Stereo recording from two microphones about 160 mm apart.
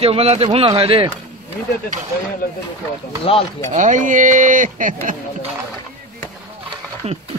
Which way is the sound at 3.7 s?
50° right (ahead or behind).